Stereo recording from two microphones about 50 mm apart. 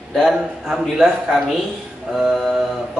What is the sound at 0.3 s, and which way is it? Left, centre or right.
Speech, centre.